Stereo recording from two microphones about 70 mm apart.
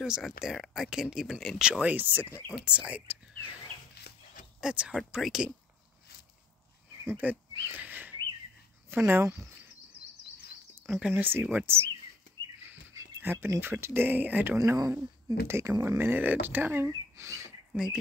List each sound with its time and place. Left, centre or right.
0.0 s speech: centre
1.6 s speech: centre
3.1 s a sound: centre
4.6 s speech: centre
7.1 s a sound: right
8.9 s speech: right
11.0 s speech: right
13.2 s speech: right
14.8 s speech: right
16.0 s speech: right
17.7 s speech: right